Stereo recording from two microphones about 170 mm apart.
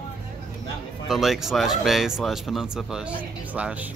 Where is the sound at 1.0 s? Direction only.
Centre (ahead or behind).